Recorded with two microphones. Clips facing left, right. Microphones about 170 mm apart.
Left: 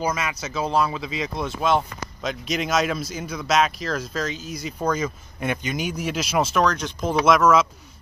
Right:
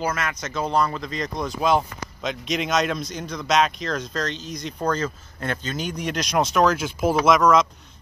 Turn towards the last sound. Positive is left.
turn(degrees=5)  # may be behind; listen again after turning